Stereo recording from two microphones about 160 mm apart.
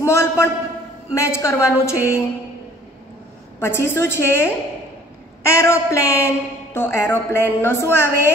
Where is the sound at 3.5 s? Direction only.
15° left (ahead or behind).